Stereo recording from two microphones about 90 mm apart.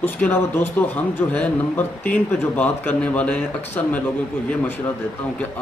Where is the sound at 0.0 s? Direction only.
20° left (ahead or behind).